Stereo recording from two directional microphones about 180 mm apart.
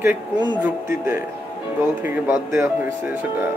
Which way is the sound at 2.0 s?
15° right (ahead or behind).